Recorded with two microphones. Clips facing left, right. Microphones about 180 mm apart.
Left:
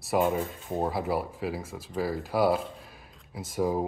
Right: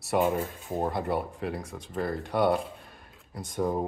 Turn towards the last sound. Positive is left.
turn(degrees=5)  # may be behind; listen again after turning